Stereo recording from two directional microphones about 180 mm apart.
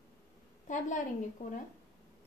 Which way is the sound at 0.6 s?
45° left (ahead or behind).